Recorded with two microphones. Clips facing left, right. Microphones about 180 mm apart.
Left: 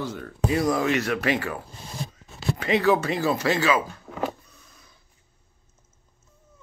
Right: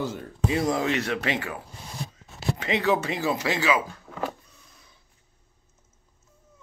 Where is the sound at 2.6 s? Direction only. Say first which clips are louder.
Left 4 dB; 20° right (ahead or behind).